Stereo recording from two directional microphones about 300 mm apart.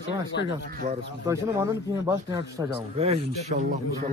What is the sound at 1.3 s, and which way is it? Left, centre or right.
Speech, centre.